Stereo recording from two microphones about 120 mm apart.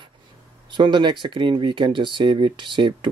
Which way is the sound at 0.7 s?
40° right (ahead or behind).